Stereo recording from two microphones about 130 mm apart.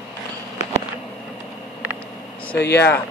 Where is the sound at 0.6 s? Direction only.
60° left (ahead or behind).